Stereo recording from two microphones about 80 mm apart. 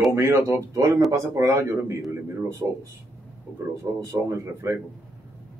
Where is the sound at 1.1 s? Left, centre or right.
Right.